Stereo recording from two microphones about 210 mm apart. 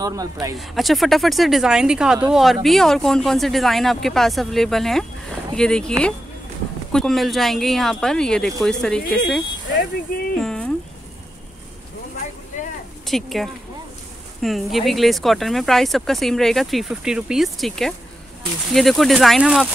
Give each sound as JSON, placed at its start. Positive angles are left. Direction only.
{"t": 0.0, "sound": "speech", "side_deg": -15}
{"t": 0.6, "sound": "speech", "side_deg": 0}
{"t": 10.3, "sound": "a sound", "side_deg": 5}
{"t": 13.0, "sound": "speech", "side_deg": 0}